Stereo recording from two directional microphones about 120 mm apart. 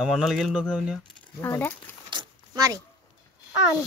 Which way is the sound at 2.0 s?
35° right (ahead or behind).